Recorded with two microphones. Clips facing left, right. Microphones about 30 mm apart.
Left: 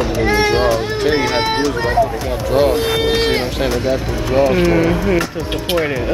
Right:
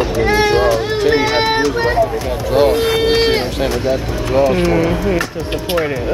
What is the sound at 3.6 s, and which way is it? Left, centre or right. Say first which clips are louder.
Speech: even; centre.